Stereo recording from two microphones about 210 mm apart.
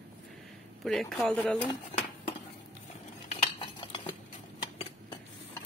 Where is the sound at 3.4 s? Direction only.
25° left (ahead or behind).